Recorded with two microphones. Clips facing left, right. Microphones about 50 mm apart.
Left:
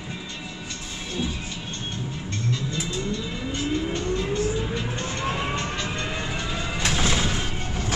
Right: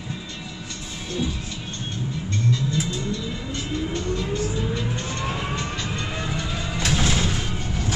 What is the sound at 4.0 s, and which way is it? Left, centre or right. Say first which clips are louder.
Music: left 1 dB; centre.